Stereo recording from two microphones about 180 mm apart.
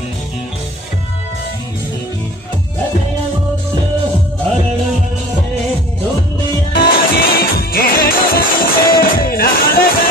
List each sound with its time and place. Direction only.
6.7 s music: 55° left (ahead or behind)